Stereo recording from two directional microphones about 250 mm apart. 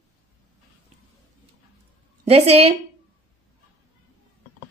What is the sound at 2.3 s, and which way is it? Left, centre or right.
Speech, right.